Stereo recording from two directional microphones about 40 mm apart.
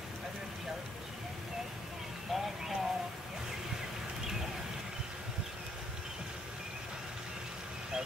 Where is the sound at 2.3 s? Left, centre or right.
Centre.